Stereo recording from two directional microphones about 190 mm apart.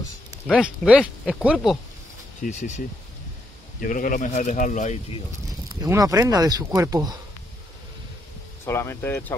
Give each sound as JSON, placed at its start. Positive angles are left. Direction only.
{"t": 0.5, "sound": "speech", "side_deg": -5}
{"t": 2.4, "sound": "speech", "side_deg": 40}
{"t": 3.8, "sound": "speech", "side_deg": 45}
{"t": 5.7, "sound": "speech", "side_deg": -20}
{"t": 8.6, "sound": "speech", "side_deg": 15}